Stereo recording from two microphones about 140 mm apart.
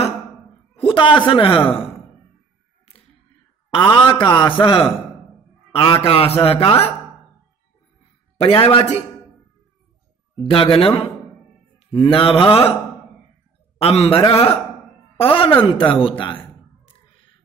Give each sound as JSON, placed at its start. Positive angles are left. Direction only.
{"t": 0.7, "sound": "a man's voice", "side_deg": 40}
{"t": 3.7, "sound": "a man's voice", "side_deg": 35}
{"t": 8.4, "sound": "speech", "side_deg": 45}
{"t": 10.4, "sound": "a man's voice", "side_deg": 40}
{"t": 13.7, "sound": "speech", "side_deg": 45}
{"t": 15.1, "sound": "a sound", "side_deg": 40}